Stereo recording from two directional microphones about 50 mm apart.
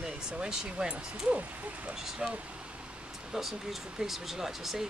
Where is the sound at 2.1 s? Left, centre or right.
Centre.